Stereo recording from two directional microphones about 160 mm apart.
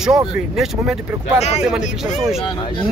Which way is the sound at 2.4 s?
30° left (ahead or behind).